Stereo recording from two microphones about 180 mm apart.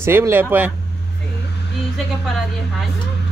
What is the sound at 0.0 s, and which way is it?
Speech, 15° right (ahead or behind).